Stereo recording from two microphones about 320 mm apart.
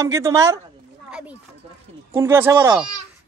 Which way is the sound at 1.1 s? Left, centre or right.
Centre.